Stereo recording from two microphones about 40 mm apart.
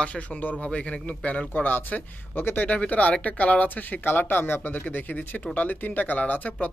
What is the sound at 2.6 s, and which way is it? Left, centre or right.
Speech, left.